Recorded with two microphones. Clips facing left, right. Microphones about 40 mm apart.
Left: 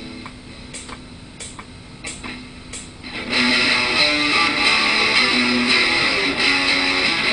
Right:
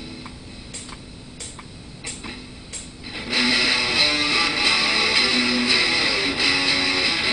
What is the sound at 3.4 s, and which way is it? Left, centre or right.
Music, left.